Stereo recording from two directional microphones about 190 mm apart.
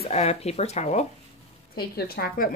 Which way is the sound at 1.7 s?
55° left (ahead or behind).